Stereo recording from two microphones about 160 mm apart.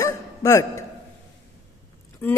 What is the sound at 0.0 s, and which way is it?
Hiccup, 20° left (ahead or behind).